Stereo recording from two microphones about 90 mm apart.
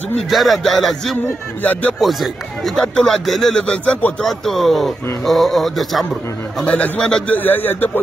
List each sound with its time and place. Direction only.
0.3 s a man's voice: centre (ahead or behind)
1.6 s speech: 20° left (ahead or behind)
2.0 s a man's voice: centre (ahead or behind)
4.2 s a man's voice: centre (ahead or behind)
6.6 s a man's voice: 15° left (ahead or behind)
7.3 s speech: 20° left (ahead or behind)